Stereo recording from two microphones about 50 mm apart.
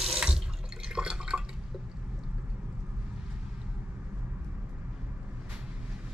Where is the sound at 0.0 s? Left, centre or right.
Centre.